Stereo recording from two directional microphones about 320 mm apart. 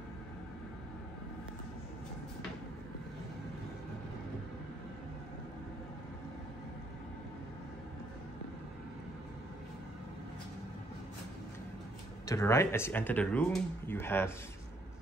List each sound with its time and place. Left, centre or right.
12.3 s speech: centre